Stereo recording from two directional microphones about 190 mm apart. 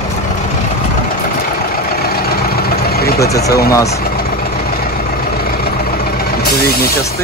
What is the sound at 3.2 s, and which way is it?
Speech, 15° left (ahead or behind).